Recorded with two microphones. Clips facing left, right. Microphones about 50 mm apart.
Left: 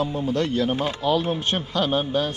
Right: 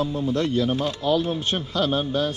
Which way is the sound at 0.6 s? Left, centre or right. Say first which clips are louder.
Left 1 dB; left.